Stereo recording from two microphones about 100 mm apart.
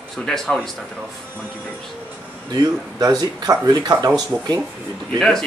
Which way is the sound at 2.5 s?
40° right (ahead or behind).